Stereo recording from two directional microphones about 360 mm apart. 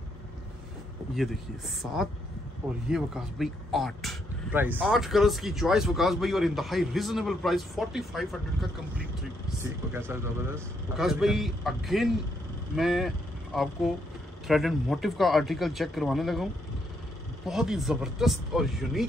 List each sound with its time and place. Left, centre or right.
1.1 s speech: centre
17.5 s speech: centre